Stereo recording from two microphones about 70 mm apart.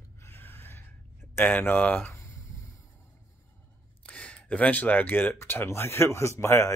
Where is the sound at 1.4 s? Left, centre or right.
Left.